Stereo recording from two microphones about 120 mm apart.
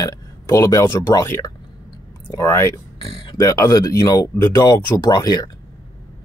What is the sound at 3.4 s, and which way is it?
Speech, 25° left (ahead or behind).